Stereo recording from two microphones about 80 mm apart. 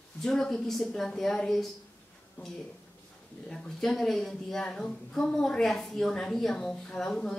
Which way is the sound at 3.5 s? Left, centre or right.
Centre.